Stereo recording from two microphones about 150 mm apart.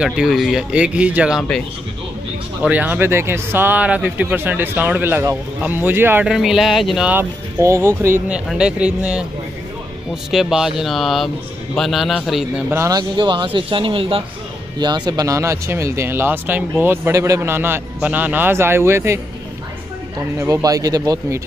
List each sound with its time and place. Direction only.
0.0 s speech: 5° right (ahead or behind)
2.6 s speech: 10° right (ahead or behind)
6.2 s speech: 5° right (ahead or behind)
10.3 s speech: 5° right (ahead or behind)
12.7 s speech: 20° right (ahead or behind)
13.2 s speech: 35° right (ahead or behind); by 19.1 s 15° right (ahead or behind)
20.3 s speech: 20° right (ahead or behind)